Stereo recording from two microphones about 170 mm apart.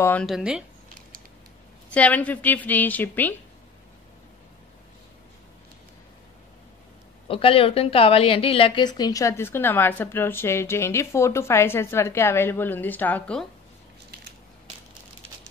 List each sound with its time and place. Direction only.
0.0 s a woman's voice: 10° left (ahead or behind)
0.3 s speech: 5° right (ahead or behind)
2.0 s a woman's voice: 10° left (ahead or behind)
7.2 s a woman's voice: 35° left (ahead or behind); by 13.5 s 5° left (ahead or behind)